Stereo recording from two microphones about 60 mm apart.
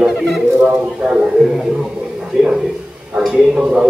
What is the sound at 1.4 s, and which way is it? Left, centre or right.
Speech, centre.